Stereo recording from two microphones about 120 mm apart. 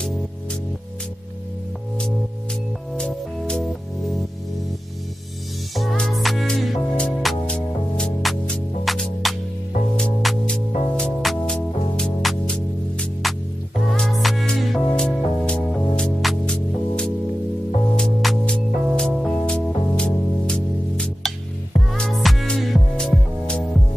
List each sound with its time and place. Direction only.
3.0 s music: 5° left (ahead or behind)
5.8 s music: 5° left (ahead or behind)